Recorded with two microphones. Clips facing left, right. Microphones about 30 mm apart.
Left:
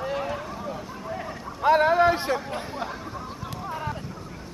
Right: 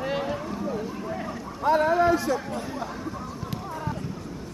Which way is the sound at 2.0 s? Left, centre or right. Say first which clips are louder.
Left 1 dB; left.